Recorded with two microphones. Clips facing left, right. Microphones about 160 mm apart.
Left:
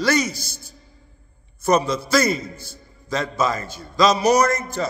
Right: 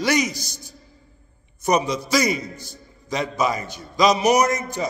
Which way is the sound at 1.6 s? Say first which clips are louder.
Left 2 dB; 15° right (ahead or behind).